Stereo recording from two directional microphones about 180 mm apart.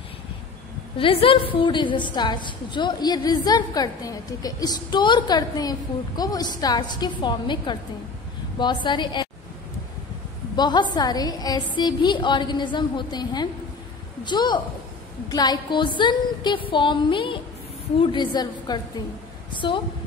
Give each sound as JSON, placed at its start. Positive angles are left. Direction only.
{"t": 0.9, "sound": "a woman's voice", "side_deg": 30}
{"t": 10.5, "sound": "a woman's voice", "side_deg": 25}